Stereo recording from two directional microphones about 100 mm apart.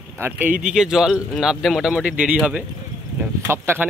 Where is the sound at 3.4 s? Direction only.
25° right (ahead or behind).